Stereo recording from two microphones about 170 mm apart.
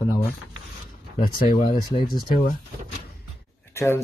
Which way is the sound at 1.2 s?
55° left (ahead or behind).